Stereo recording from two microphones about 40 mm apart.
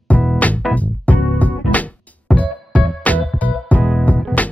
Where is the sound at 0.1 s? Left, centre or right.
Left.